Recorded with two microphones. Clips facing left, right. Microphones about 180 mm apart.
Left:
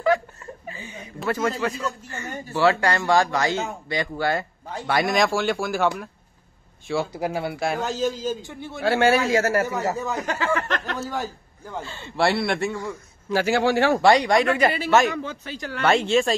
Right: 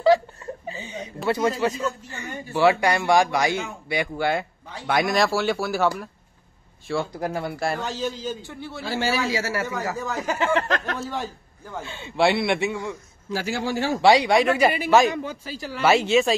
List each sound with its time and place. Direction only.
0.7 s a woman's voice: 20° right (ahead or behind)
1.6 s speech: 35° right (ahead or behind)
2.0 s speech: 15° right (ahead or behind); by 7.8 s 5° left (ahead or behind)
7.8 s a man's voice: 45° left (ahead or behind)
8.5 s a man's voice: 15° left (ahead or behind)
8.8 s a man's voice: 65° left (ahead or behind)
10.0 s speech: 5° right (ahead or behind)
13.3 s a man's voice: 70° left (ahead or behind)
14.0 s speech: 5° right (ahead or behind)
15.4 s speech: 5° right (ahead or behind)